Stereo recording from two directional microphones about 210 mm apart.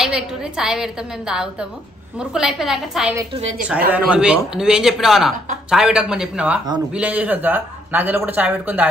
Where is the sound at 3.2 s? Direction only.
25° right (ahead or behind).